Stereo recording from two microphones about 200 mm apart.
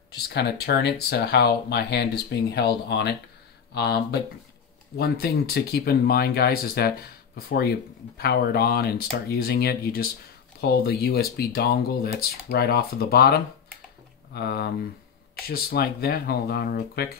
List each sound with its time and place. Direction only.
0.3 s speech: 55° left (ahead or behind)